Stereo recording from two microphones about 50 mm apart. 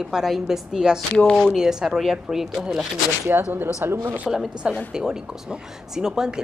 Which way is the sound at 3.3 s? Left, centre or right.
Right.